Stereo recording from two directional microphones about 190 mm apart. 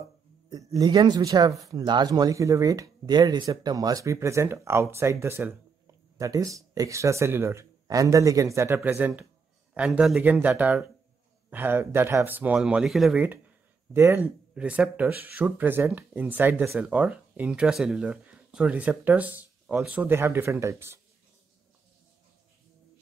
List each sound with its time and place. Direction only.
0.5 s speech: 20° right (ahead or behind)